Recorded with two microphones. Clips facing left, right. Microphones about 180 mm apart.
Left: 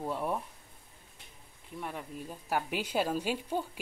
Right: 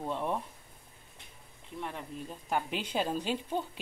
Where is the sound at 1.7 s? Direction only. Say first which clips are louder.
Even; 5° left (ahead or behind).